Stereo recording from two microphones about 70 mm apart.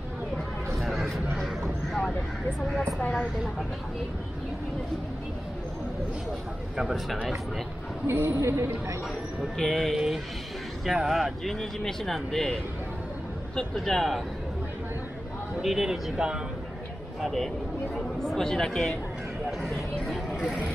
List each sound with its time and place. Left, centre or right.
0.7 s a sound: centre
1.9 s vehicle: centre
6.8 s speech: centre
8.1 s a woman's voice: right
9.6 s speech: centre
9.9 s speech: centre
13.6 s speech: centre
15.6 s speech: centre
19.6 s a sound: centre